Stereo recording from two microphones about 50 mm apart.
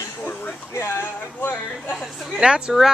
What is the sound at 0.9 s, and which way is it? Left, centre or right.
Speech, left.